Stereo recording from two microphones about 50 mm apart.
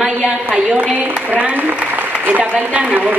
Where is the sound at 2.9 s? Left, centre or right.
Right.